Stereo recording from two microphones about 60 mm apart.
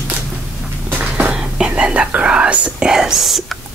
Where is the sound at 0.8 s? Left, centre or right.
Right.